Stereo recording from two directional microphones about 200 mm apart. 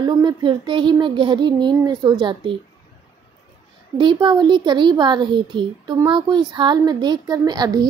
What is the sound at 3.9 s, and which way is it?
A woman's voice, 25° right (ahead or behind).